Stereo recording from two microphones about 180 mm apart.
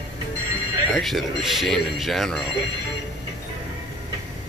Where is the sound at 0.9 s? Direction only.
Centre (ahead or behind).